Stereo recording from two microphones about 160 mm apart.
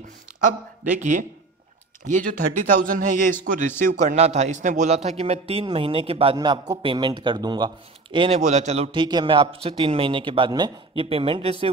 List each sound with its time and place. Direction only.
0.4 s a man's voice: 50° right (ahead or behind); by 8.4 s 30° right (ahead or behind)
8.4 s speech: 50° right (ahead or behind)
8.9 s speech: 30° right (ahead or behind)